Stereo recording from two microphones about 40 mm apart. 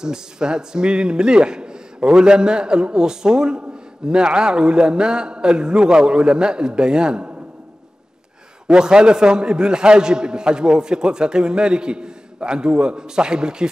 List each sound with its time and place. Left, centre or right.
0.0 s a man's voice: centre
8.6 s a man's voice: centre